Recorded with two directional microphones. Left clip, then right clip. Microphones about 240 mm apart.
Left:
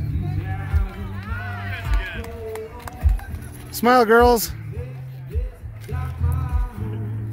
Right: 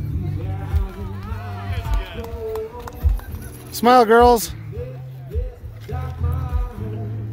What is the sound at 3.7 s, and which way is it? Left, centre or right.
Speech, centre.